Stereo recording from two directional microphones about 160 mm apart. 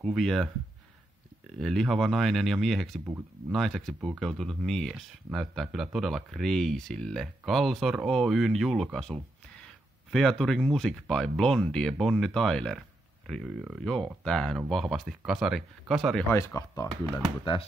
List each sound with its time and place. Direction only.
0.0 s speech: centre (ahead or behind)
1.6 s speech: centre (ahead or behind)
16.3 s speech: 20° left (ahead or behind)